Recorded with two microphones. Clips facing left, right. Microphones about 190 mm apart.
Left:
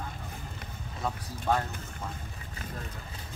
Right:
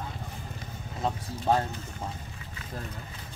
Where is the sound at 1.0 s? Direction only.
25° right (ahead or behind).